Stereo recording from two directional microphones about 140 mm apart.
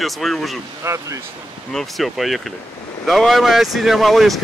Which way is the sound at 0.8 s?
20° right (ahead or behind).